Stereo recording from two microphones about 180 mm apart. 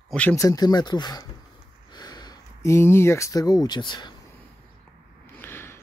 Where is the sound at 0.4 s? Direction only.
20° left (ahead or behind).